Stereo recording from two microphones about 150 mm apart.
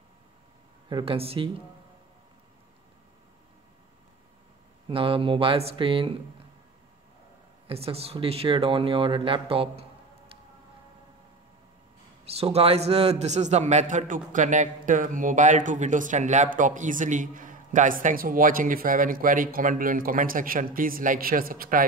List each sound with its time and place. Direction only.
0.8 s speech: 35° right (ahead or behind)
4.8 s speech: 35° right (ahead or behind)
7.6 s speech: 40° right (ahead or behind)
12.3 s a man's voice: 40° right (ahead or behind); by 21.8 s 70° right (ahead or behind)